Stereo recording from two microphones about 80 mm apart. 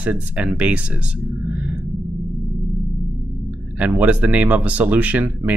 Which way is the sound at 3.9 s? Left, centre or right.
Centre.